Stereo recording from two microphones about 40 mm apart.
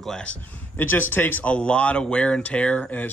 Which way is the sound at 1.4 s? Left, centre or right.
Left.